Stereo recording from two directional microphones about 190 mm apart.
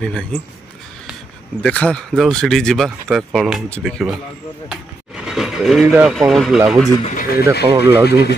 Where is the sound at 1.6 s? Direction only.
5° left (ahead or behind).